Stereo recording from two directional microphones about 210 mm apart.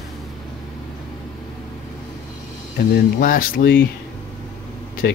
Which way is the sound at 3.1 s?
40° left (ahead or behind).